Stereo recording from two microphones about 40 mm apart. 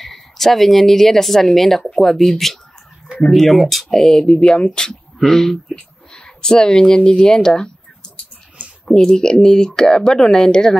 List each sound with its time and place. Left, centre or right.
0.0 s speech: centre